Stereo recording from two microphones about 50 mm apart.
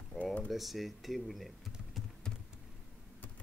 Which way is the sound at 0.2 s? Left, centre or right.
Left.